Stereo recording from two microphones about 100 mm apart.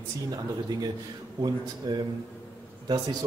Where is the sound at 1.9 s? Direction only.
45° right (ahead or behind).